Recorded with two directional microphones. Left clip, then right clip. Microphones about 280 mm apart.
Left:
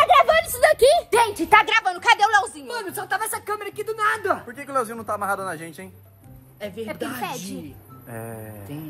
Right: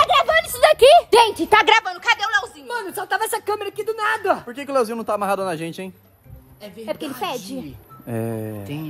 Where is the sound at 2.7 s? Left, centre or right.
Centre.